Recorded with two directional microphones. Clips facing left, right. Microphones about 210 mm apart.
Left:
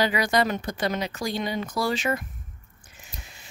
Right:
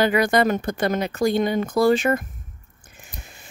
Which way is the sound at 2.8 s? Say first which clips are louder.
Right 5 dB; 55° right (ahead or behind).